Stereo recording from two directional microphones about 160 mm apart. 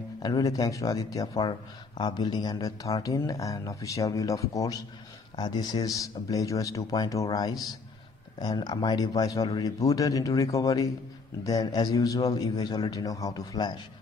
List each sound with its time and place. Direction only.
0.2 s speech: 20° left (ahead or behind)